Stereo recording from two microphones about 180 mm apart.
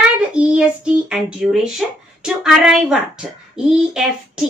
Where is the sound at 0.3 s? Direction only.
5° right (ahead or behind).